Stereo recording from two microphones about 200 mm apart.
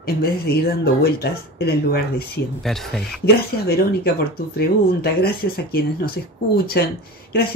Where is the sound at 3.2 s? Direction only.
50° left (ahead or behind).